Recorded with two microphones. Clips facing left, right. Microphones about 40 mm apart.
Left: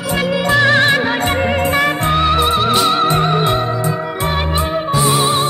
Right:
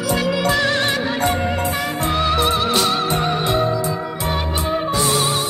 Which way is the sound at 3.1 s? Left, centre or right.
Left.